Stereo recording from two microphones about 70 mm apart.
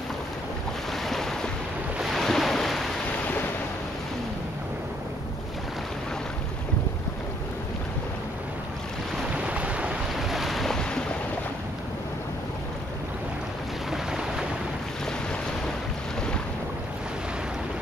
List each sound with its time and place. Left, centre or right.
1.0 s waves: centre
2.0 s ocean: centre
9.3 s boat: centre
10.1 s boat: centre
13.8 s boat: centre